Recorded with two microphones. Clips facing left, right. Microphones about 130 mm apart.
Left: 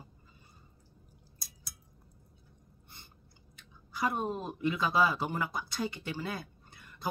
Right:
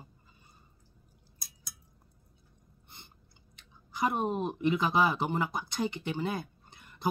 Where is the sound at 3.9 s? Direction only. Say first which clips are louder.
Right 3 dB; 20° right (ahead or behind).